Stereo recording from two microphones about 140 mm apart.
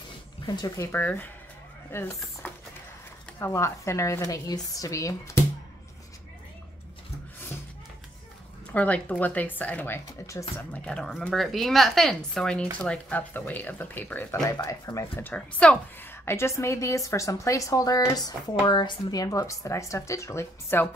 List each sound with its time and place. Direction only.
0.6 s speech: 25° left (ahead or behind)
0.9 s speech: 15° left (ahead or behind)
8.7 s speech: 10° left (ahead or behind)
10.7 s speech: 5° left (ahead or behind)
14.4 s speech: 25° left (ahead or behind)